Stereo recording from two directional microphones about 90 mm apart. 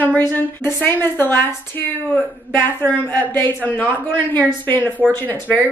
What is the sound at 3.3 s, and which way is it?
A woman's voice, 20° left (ahead or behind).